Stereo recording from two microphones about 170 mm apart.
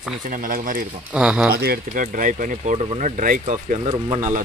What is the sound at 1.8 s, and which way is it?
Speech, 50° right (ahead or behind).